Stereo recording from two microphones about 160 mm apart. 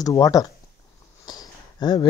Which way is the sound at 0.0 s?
25° left (ahead or behind).